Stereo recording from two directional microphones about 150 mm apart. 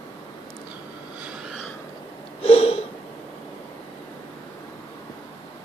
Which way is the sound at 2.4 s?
40° left (ahead or behind).